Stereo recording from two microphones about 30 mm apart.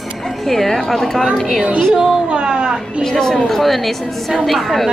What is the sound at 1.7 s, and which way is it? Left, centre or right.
A woman's voice, right.